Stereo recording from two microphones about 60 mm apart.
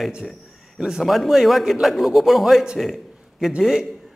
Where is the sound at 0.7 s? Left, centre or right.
Centre.